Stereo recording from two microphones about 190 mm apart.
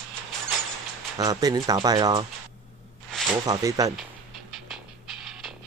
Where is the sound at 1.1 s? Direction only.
20° right (ahead or behind).